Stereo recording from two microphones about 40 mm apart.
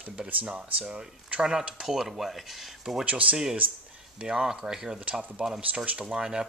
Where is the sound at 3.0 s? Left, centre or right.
Right.